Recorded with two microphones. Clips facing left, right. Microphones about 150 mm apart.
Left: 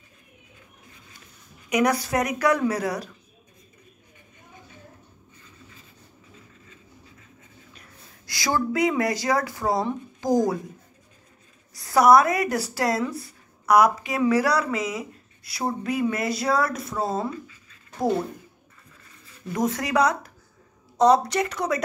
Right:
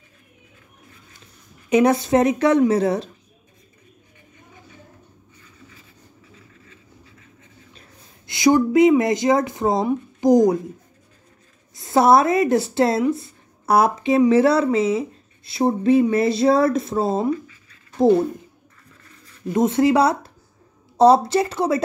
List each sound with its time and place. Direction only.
1.7 s speech: 25° right (ahead or behind)
8.3 s speech: 20° right (ahead or behind)
11.7 s speech: 25° right (ahead or behind)
19.5 s speech: 25° right (ahead or behind)